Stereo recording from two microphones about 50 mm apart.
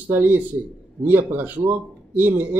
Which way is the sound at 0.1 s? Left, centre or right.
Right.